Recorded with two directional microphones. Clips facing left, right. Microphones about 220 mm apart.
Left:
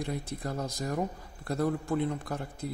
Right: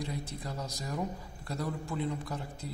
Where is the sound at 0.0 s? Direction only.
55° left (ahead or behind).